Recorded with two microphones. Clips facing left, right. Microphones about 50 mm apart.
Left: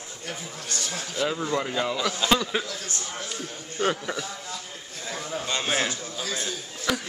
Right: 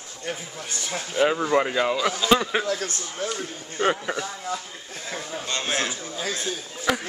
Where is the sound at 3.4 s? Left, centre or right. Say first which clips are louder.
Right 2 dB; centre.